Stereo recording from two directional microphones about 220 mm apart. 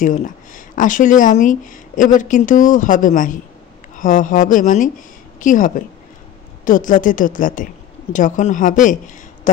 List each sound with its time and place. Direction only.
0.0 s a woman's voice: 35° left (ahead or behind)